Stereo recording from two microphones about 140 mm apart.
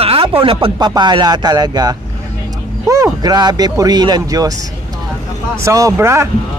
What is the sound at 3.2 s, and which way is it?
Speech, 30° right (ahead or behind).